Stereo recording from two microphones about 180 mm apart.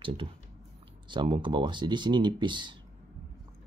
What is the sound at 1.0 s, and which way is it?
Speech, 25° right (ahead or behind).